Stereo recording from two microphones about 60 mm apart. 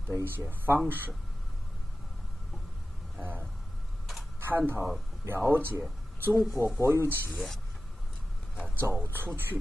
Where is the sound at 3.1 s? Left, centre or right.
Right.